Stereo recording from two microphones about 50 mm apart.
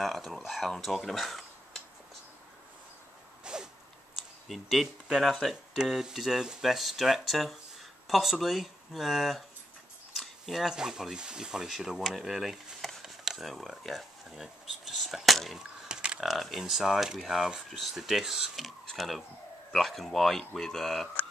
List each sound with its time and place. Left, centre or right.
0.0 s speech: centre
3.5 s sneeze: centre
4.5 s speech: centre
15.9 s typing: centre
16.2 s speech: centre